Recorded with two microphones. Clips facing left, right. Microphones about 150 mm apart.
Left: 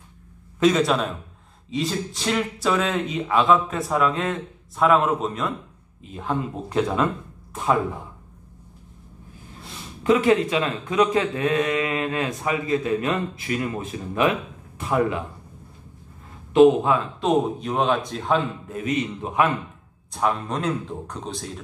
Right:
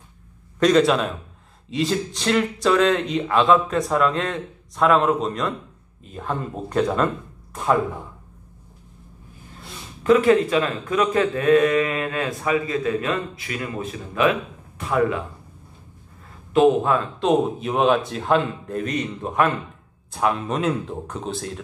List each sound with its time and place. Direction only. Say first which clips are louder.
0.6 s speech: right 2 dB; 5° left (ahead or behind)
10.0 s a man's voice: right 2 dB; 15° left (ahead or behind)
14.9 s a man's voice: right 1 dB; 25° left (ahead or behind)
17.2 s speech: right 2 dB; 5° right (ahead or behind)
20.1 s speech: right 2 dB; 5° right (ahead or behind)